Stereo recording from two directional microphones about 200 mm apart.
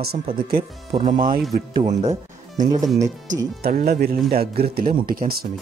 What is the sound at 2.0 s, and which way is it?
Music, 40° right (ahead or behind).